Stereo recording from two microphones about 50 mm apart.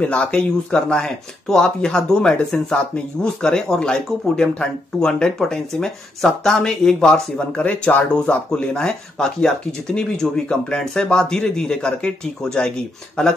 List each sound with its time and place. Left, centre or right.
0.0 s speech: left